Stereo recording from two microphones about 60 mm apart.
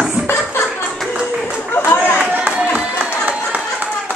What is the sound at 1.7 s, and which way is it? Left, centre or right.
Chatter, left.